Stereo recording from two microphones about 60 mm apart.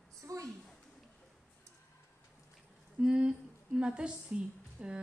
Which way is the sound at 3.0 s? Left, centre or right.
Centre.